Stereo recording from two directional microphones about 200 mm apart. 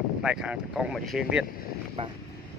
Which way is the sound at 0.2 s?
5° right (ahead or behind).